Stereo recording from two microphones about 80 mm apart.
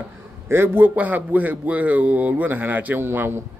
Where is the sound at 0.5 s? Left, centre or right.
Right.